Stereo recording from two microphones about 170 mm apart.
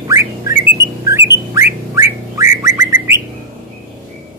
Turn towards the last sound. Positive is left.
turn(degrees=-15)  # may be behind; listen again after turning